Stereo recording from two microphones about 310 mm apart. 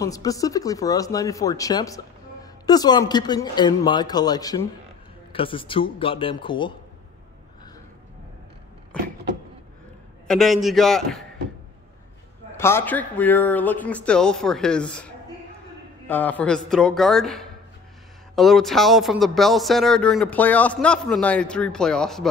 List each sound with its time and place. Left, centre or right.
0.0 s a man's voice: centre
10.2 s speech: centre
12.5 s speech: centre